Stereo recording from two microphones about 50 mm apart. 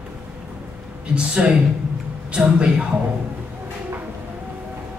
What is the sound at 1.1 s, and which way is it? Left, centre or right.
A woman's voice, centre.